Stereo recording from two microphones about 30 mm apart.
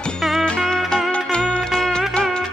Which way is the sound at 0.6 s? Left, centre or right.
Left.